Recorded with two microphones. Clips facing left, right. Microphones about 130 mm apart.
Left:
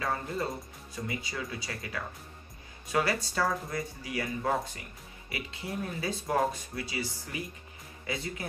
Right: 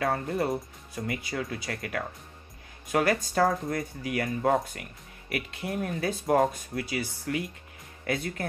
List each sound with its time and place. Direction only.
0.0 s speech: 60° right (ahead or behind)
7.3 s speech: 70° right (ahead or behind)